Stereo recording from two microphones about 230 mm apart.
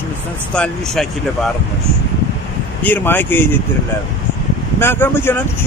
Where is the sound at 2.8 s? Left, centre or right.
Centre.